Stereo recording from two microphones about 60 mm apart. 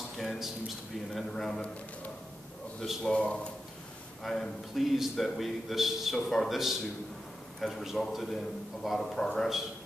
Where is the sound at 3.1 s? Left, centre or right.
Centre.